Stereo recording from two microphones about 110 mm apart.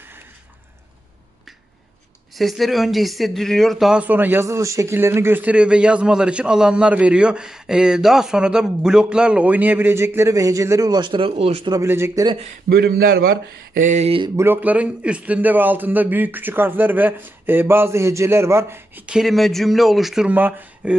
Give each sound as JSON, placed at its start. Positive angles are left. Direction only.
{"t": 2.3, "sound": "speech", "side_deg": 0}
{"t": 4.0, "sound": "a man's voice", "side_deg": -15}
{"t": 11.8, "sound": "a man's voice", "side_deg": -25}
{"t": 14.3, "sound": "a man's voice", "side_deg": -20}
{"t": 19.0, "sound": "speech", "side_deg": -5}
{"t": 20.3, "sound": "a man's voice", "side_deg": -15}